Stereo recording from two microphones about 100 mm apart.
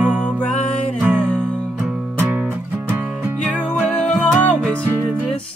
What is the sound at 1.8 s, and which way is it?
Music, 10° right (ahead or behind).